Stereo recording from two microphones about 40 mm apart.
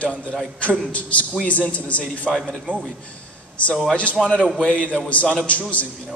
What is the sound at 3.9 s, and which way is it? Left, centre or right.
Speech, left.